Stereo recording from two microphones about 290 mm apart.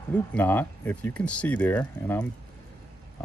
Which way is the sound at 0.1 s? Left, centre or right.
Centre.